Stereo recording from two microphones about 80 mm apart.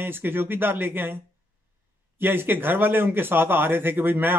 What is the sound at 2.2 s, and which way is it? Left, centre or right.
Speech, right.